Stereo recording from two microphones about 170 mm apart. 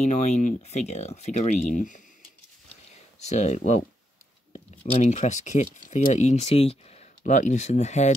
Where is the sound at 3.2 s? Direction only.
45° left (ahead or behind).